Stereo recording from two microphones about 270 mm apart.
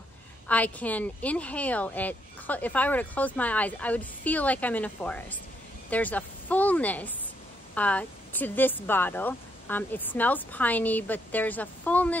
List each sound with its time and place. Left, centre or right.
0.5 s a woman's voice: centre